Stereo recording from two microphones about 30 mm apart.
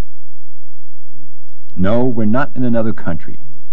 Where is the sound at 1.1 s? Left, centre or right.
Left.